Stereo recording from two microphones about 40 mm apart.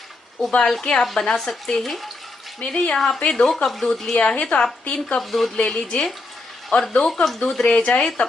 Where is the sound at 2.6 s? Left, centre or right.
Left.